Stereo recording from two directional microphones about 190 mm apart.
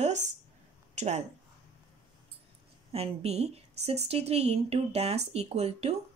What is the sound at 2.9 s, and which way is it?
Speech, 30° right (ahead or behind).